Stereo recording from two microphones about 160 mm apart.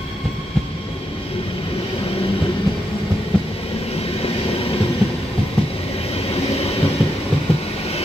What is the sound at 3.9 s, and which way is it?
Train, 40° left (ahead or behind).